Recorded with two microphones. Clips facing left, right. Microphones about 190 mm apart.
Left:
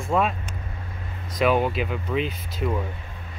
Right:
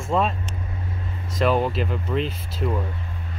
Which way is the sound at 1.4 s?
5° left (ahead or behind).